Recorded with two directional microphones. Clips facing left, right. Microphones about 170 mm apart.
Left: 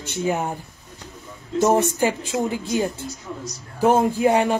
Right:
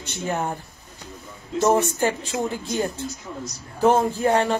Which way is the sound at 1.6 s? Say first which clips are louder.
Left 1 dB; 15° left (ahead or behind).